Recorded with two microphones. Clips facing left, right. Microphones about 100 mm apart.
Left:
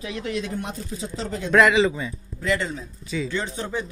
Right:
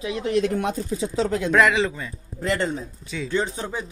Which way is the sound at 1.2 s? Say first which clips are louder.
Right 7 dB; 80° right.